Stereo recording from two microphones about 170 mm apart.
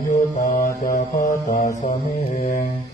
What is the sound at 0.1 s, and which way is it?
Mantra, 55° left (ahead or behind).